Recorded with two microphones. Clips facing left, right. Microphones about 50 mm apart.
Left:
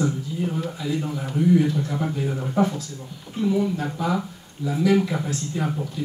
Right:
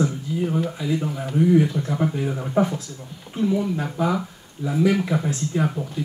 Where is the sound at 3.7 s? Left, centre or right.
Right.